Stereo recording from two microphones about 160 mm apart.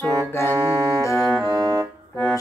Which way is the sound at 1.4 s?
20° right (ahead or behind).